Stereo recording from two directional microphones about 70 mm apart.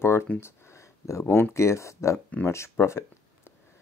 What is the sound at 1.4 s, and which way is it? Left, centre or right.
Speech, left.